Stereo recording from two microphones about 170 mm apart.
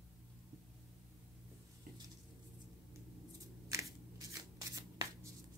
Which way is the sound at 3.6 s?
20° right (ahead or behind).